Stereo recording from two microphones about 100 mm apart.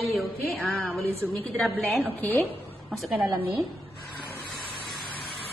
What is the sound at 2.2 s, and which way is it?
Speech, 15° left (ahead or behind).